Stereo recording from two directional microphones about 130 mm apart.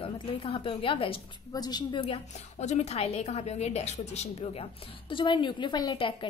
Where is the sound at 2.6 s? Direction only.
60° left (ahead or behind).